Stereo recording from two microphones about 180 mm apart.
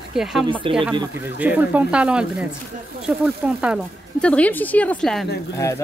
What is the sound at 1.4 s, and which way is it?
Speech, 10° right (ahead or behind).